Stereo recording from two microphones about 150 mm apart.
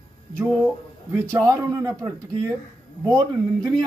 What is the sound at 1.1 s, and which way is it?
A man's voice, 20° right (ahead or behind).